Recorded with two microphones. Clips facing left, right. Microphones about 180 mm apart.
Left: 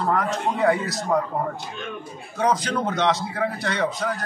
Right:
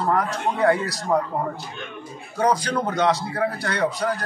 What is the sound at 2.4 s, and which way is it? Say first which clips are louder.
A man's voice: right 1 dB; centre (ahead or behind).